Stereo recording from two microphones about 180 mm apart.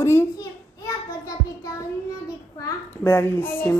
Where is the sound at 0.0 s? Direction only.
15° left (ahead or behind).